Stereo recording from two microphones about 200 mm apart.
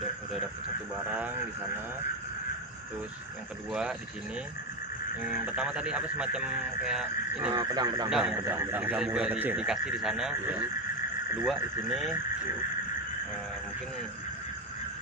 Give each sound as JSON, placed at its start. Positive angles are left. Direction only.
{"t": 5.2, "sound": "speech", "side_deg": -5}
{"t": 7.5, "sound": "speech", "side_deg": -20}
{"t": 8.1, "sound": "speech", "side_deg": -5}